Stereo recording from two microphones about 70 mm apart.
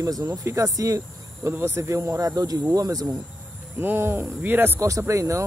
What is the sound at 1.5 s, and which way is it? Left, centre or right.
Speech, right.